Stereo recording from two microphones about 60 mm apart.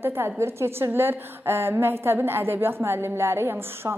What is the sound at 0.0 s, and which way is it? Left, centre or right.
A woman's voice, right.